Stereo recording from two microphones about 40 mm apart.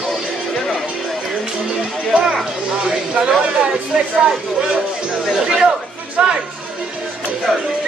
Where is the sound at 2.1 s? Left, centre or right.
Centre.